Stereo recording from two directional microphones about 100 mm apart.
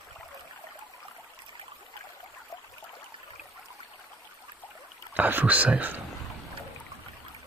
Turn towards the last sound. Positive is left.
turn(degrees=-15)  # may be behind; listen again after turning